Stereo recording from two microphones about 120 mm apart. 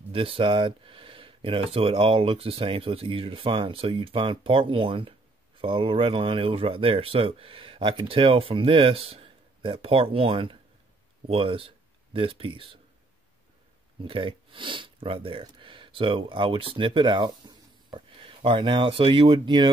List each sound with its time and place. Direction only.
0.1 s speech: 50° right (ahead or behind)
14.0 s speech: 50° right (ahead or behind)